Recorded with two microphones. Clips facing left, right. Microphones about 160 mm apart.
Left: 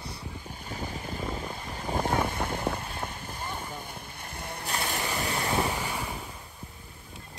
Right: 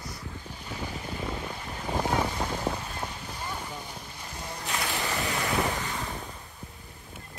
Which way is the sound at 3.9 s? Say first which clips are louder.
Even; 55° left (ahead or behind).